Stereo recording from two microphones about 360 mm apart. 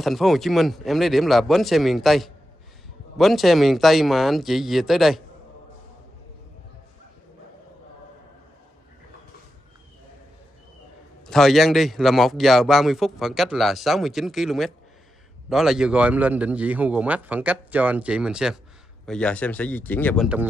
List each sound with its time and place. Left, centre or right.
0.0 s a man's voice: centre
11.2 s a man's voice: centre